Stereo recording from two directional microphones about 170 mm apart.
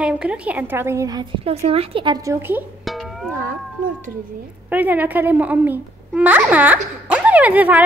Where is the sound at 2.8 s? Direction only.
Centre (ahead or behind).